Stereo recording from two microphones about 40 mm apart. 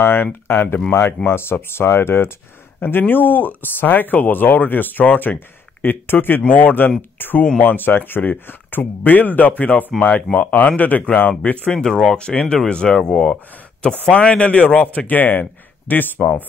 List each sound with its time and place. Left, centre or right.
0.0 s speech: left
1.0 s speech: left
2.8 s speech: left
5.3 s a sound: left
6.0 s speech: left
11.6 s speech: centre
14.2 s speech: left
16.2 s speech: centre